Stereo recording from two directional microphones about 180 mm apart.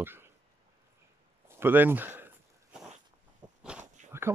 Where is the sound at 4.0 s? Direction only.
40° right (ahead or behind).